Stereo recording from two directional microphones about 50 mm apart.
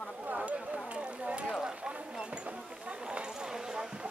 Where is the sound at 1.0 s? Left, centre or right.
Right.